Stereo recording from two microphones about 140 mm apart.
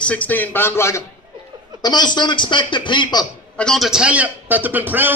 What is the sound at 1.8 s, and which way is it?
A man's voice, 30° left (ahead or behind).